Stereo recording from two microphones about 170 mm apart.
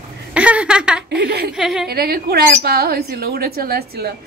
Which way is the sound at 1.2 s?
75° right (ahead or behind).